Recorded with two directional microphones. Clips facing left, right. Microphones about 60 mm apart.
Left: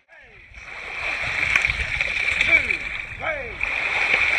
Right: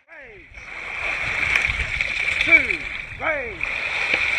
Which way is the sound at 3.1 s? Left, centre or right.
Centre.